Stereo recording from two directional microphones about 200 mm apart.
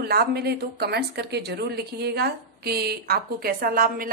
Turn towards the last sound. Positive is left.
turn(degrees=-45)  # may be behind; listen again after turning